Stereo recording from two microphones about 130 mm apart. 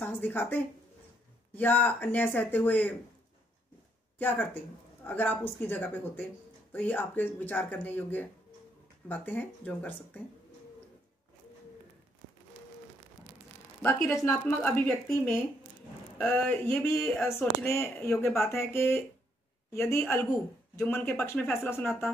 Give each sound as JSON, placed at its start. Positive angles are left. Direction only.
{"t": 0.0, "sound": "a woman's voice", "side_deg": 15}
{"t": 4.2, "sound": "speech", "side_deg": 15}
{"t": 14.1, "sound": "speech", "side_deg": 20}
{"t": 14.4, "sound": "speech", "side_deg": 10}
{"t": 16.2, "sound": "speech", "side_deg": 10}